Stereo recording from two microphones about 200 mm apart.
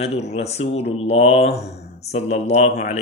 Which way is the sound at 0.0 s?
30° left (ahead or behind).